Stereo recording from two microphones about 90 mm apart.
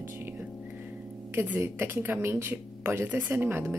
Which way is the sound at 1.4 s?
25° right (ahead or behind).